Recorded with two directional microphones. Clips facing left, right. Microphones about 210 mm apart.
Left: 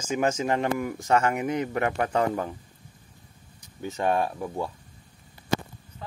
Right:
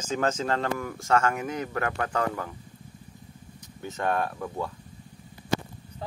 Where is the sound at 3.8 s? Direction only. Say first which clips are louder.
Left 3 dB; 15° left (ahead or behind).